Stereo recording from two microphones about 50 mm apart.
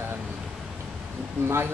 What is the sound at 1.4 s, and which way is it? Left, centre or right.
Speech, right.